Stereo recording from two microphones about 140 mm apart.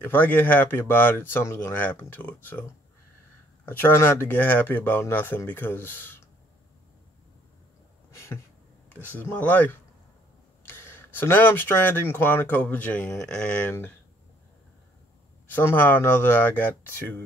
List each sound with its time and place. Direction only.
0.0 s speech: 15° left (ahead or behind)
8.1 s a sound: 20° left (ahead or behind)
8.8 s speech: 15° left (ahead or behind)
15.5 s speech: 15° left (ahead or behind)